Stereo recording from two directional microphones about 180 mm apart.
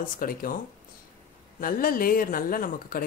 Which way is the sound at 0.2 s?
50° left (ahead or behind).